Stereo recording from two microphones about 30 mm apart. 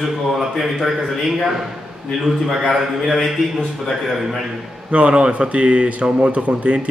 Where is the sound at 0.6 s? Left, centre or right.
Centre.